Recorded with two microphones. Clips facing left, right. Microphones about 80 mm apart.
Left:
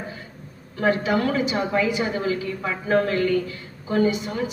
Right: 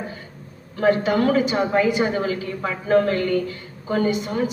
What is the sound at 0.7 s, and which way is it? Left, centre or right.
A woman's voice, right.